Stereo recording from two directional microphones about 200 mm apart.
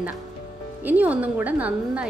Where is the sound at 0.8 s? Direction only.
10° right (ahead or behind).